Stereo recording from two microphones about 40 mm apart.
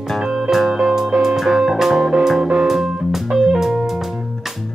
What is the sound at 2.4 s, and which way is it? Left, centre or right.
Music, right.